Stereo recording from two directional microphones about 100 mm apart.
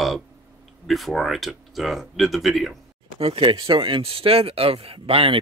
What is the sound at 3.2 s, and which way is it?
Speech, 65° right (ahead or behind).